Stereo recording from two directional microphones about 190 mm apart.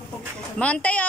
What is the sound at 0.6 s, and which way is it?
Speech, 5° left (ahead or behind).